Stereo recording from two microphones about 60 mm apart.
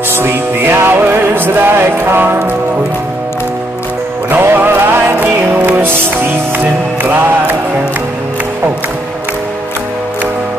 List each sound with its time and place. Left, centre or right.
0.1 s music: right
4.3 s music: right